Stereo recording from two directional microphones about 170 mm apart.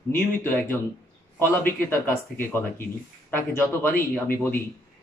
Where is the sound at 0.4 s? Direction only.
15° left (ahead or behind).